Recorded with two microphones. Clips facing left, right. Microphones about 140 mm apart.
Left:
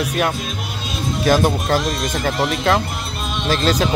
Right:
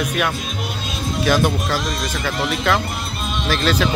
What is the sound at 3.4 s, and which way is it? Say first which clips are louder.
Speech: left 1 dB; 30° left (ahead or behind).